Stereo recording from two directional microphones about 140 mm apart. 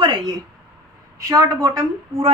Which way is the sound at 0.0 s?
30° right (ahead or behind).